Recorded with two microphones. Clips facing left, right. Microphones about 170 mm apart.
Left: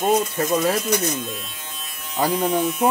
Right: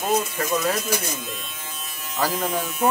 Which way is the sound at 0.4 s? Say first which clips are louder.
Left 3 dB; 25° left (ahead or behind).